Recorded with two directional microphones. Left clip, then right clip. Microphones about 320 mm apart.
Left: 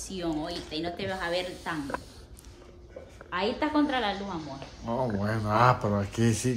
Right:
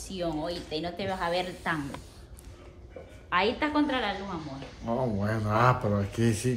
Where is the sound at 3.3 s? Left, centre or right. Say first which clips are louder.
Right 2 dB; centre.